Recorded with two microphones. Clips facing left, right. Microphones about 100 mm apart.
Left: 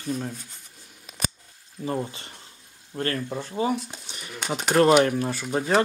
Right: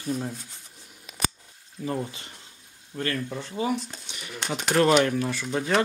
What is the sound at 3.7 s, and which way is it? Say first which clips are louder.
Speech: even; 5° left (ahead or behind).